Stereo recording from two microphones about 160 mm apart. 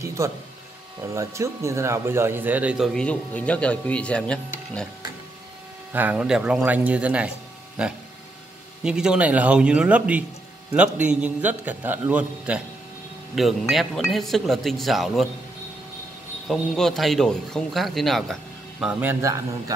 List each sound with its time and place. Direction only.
0.0 s speech: 20° right (ahead or behind); by 4.8 s 5° left (ahead or behind)
5.9 s speech: 10° right (ahead or behind)
16.4 s speech: centre (ahead or behind); by 19.4 s 15° right (ahead or behind)